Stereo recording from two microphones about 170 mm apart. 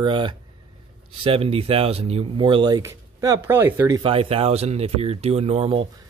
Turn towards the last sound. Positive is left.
turn(degrees=-35)  # may be behind; listen again after turning